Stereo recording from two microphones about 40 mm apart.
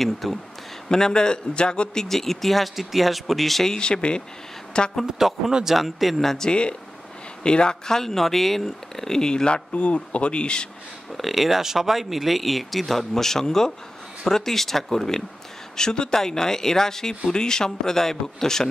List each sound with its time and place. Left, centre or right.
0.0 s speech: centre
0.8 s speech: centre
2.0 s speech: centre
3.7 s speech: left
5.5 s speech: centre
5.8 s speech: centre
7.4 s speech: left
9.8 s speech: left
11.1 s speech: centre